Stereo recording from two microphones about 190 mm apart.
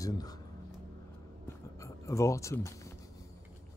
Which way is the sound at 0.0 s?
20° left (ahead or behind).